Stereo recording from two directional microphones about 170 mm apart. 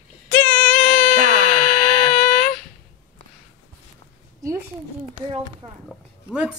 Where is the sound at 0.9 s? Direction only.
55° left (ahead or behind).